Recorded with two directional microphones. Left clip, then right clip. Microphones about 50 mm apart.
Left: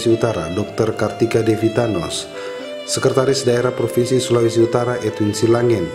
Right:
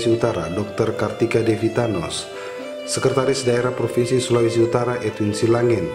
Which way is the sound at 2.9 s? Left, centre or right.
Centre.